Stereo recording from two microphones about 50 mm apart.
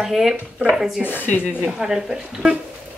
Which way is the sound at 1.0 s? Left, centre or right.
Left.